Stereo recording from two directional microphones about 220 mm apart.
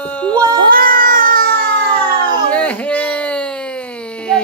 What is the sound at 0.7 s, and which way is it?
Cat, 40° right (ahead or behind).